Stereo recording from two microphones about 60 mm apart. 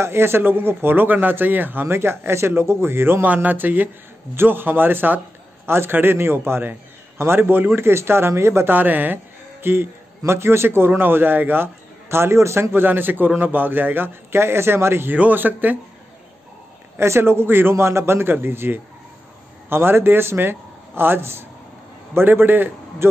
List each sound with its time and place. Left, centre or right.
0.0 s a man's voice: right
3.4 s a man's voice: right
8.7 s a man's voice: right
15.1 s a man's voice: right
17.0 s a man's voice: right